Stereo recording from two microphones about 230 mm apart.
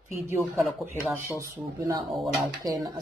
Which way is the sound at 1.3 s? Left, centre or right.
Centre.